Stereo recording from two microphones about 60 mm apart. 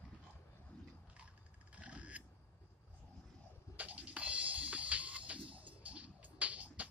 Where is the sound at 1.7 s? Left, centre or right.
Right.